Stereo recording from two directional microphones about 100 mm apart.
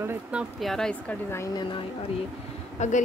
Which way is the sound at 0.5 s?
5° left (ahead or behind).